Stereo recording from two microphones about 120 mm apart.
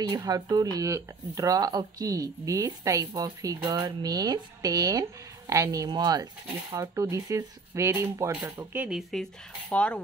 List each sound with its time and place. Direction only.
0.1 s speech: 35° right (ahead or behind)
8.3 s speech: 15° right (ahead or behind)
9.1 s speech: 5° left (ahead or behind)